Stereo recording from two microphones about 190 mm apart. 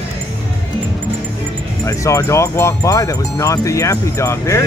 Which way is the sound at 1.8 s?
15° left (ahead or behind).